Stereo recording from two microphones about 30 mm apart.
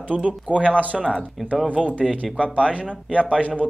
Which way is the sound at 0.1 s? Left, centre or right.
Right.